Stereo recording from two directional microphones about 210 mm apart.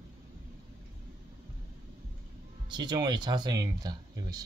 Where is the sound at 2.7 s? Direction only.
20° right (ahead or behind).